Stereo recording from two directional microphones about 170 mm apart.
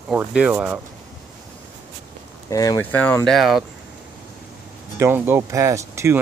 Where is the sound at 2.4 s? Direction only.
20° left (ahead or behind).